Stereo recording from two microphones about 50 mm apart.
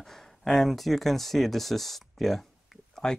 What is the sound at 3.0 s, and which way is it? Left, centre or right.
Speech, centre.